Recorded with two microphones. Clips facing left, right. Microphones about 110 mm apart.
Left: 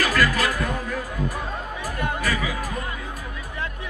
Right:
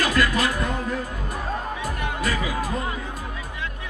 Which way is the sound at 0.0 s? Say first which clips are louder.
Even; 25° right (ahead or behind).